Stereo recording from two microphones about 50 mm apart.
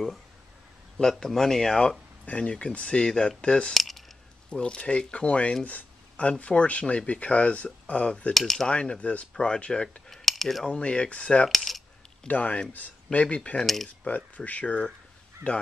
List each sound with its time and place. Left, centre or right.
1.2 s speech: centre
2.2 s speech: left
3.7 s a sound: centre
4.5 s speech: centre
8.3 s cutlery: centre
8.6 s speech: centre
10.0 s cutlery: centre
10.7 s speech: left
11.4 s coin: centre
12.3 s speech: left
14.0 s speech: left
15.4 s speech: right